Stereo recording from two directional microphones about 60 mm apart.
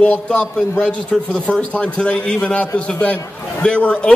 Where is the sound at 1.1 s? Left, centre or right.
Centre.